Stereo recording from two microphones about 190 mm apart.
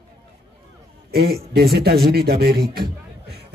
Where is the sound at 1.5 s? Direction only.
55° right (ahead or behind).